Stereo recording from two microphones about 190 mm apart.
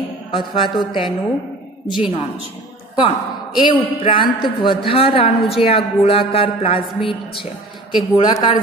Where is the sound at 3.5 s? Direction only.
25° left (ahead or behind).